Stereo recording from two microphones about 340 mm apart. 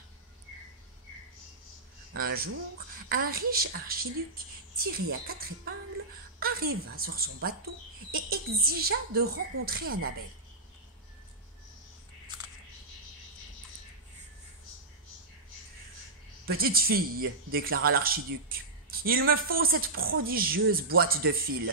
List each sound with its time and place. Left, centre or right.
2.1 s speech: right
16.4 s speech: right